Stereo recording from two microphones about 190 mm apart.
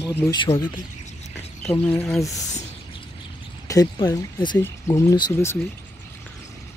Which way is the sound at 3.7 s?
20° left (ahead or behind).